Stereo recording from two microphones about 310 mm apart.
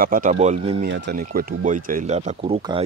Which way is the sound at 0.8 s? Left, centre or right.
Right.